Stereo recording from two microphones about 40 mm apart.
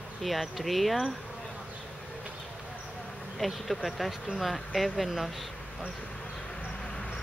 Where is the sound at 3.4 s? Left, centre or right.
Centre.